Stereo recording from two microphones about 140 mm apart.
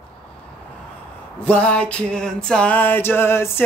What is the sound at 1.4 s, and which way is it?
Speech, 10° left (ahead or behind).